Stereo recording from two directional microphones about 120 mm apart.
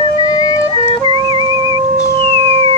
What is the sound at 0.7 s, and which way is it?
Music, 50° left (ahead or behind).